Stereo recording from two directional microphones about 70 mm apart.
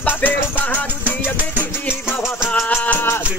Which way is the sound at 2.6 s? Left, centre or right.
Left.